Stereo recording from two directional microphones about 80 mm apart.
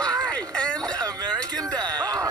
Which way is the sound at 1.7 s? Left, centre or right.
Right.